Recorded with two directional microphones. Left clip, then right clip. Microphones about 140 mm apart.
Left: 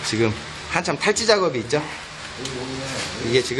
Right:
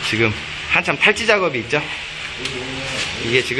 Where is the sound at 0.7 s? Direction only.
10° left (ahead or behind).